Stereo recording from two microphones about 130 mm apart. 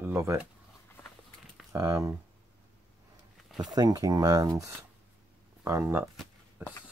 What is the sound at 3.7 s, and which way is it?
Speech, 30° right (ahead or behind).